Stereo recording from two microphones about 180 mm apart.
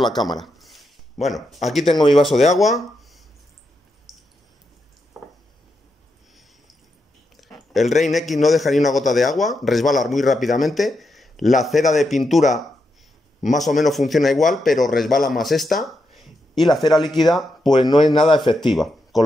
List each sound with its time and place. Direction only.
0.0 s a man's voice: centre (ahead or behind)
0.4 s a sound: centre (ahead or behind)
1.2 s a man's voice: centre (ahead or behind)
4.1 s a sound: centre (ahead or behind)
7.3 s a man's voice: centre (ahead or behind)
13.6 s a man's voice: centre (ahead or behind)
16.8 s speech: 25° left (ahead or behind)
17.1 s a man's voice: centre (ahead or behind)
17.6 s speech: 25° left (ahead or behind)
18.6 s speech: centre (ahead or behind)